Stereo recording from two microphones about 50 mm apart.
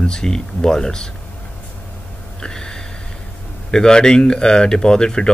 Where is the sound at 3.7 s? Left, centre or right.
Centre.